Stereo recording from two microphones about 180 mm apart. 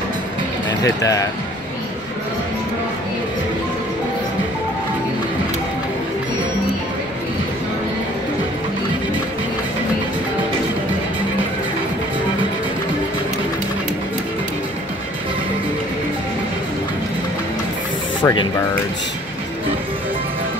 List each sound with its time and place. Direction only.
0.8 s speech: 20° left (ahead or behind)
18.2 s speech: 15° left (ahead or behind)